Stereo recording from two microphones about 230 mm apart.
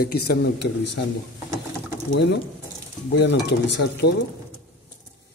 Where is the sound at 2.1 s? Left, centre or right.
Left.